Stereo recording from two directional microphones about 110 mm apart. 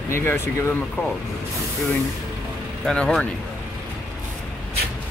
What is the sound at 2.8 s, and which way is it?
Speech, 5° left (ahead or behind).